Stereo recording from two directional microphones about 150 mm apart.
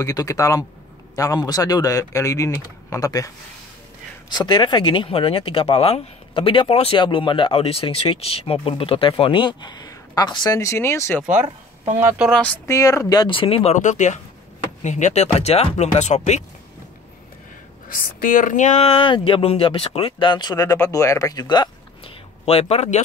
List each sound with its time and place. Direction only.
0.0 s speech: 20° left (ahead or behind)
4.3 s speech: 30° left (ahead or behind)
12.3 s speech: 10° left (ahead or behind)
12.6 s speech: 20° left (ahead or behind); by 13.7 s 40° left (ahead or behind)
13.7 s speech: 55° left (ahead or behind)
17.8 s speech: 70° left (ahead or behind); by 22.1 s 30° left (ahead or behind)
22.4 s speech: 40° left (ahead or behind)